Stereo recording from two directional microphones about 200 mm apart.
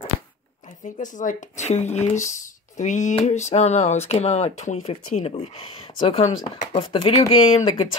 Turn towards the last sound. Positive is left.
turn(degrees=25)  # may be behind; listen again after turning